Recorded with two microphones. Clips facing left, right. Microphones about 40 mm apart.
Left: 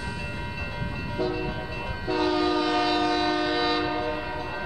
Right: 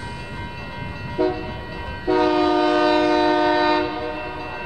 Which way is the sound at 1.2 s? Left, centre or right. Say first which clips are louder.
Right 6 dB; right.